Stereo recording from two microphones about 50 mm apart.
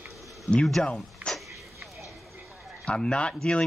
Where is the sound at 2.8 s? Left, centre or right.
Centre.